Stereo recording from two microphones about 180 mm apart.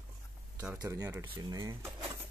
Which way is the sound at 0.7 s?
20° right (ahead or behind).